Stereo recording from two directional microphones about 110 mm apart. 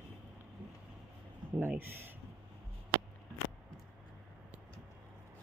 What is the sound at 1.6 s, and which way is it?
Speech, 20° right (ahead or behind).